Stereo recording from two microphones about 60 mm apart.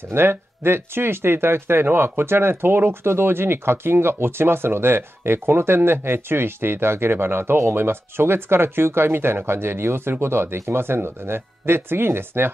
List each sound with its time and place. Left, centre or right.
0.1 s speech: right